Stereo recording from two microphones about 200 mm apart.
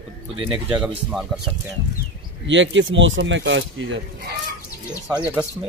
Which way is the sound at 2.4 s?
65° right (ahead or behind).